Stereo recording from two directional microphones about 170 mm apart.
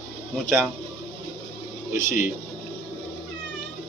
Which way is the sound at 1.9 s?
45° left (ahead or behind).